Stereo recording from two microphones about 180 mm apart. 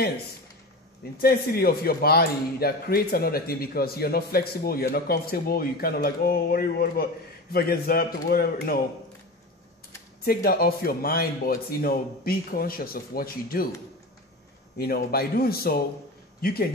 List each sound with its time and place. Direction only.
1.2 s speech: 60° left (ahead or behind)
10.2 s speech: 55° left (ahead or behind)
14.8 s speech: 60° left (ahead or behind)